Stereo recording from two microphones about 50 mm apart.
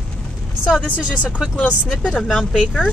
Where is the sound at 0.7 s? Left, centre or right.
Left.